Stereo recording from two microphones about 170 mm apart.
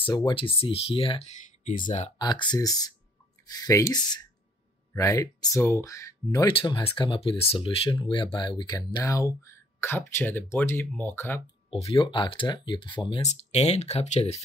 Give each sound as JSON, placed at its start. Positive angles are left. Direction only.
{"t": 0.1, "sound": "speech", "side_deg": 25}
{"t": 1.8, "sound": "speech", "side_deg": 45}
{"t": 2.1, "sound": "speech", "side_deg": 25}
{"t": 11.7, "sound": "speech", "side_deg": 35}
{"t": 13.3, "sound": "speech", "side_deg": 40}